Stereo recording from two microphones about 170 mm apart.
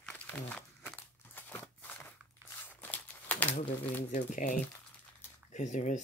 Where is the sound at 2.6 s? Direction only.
10° left (ahead or behind).